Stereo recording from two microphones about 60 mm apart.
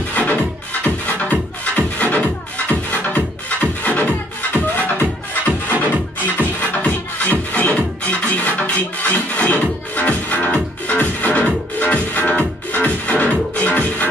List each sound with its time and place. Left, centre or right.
0.1 s music: left